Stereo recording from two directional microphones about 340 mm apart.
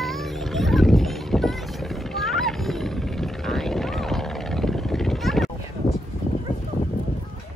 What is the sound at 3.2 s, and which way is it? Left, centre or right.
Vehicle, centre.